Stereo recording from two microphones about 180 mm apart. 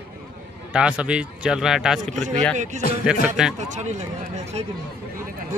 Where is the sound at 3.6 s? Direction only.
40° right (ahead or behind).